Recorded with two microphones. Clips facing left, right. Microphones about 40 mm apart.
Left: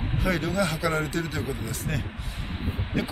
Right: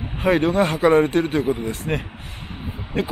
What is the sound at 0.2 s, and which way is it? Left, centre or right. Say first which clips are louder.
Speech: right 9 dB; right.